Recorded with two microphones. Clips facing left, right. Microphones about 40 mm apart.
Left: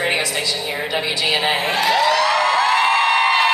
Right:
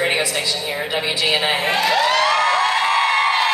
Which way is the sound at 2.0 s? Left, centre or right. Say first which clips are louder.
Even; right.